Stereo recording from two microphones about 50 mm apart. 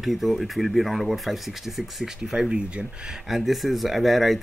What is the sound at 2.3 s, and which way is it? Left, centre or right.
Speech, centre.